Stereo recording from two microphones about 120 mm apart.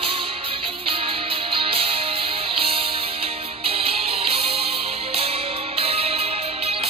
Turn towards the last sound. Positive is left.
turn(degrees=-55)  # may be behind; listen again after turning